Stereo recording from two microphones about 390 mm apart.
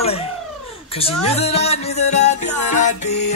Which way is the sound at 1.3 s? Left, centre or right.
Centre.